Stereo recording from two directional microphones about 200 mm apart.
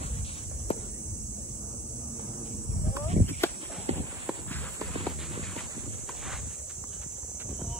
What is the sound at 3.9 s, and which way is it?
Clip-clop, 35° right (ahead or behind).